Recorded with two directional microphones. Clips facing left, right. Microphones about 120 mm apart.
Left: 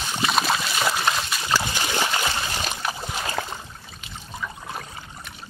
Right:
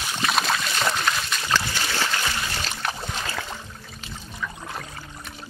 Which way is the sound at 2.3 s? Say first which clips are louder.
Left 2 dB; 20° left (ahead or behind).